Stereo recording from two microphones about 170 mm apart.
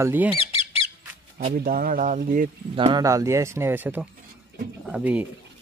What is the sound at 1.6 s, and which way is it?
Speech, 60° right (ahead or behind).